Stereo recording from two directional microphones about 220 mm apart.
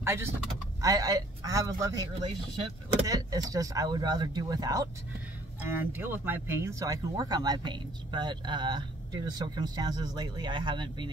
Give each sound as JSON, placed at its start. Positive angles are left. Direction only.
{"t": 0.0, "sound": "speech", "side_deg": -10}
{"t": 3.1, "sound": "speech", "side_deg": -15}